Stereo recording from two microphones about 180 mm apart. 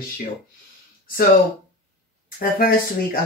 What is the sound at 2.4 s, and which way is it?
Speech, 55° left (ahead or behind).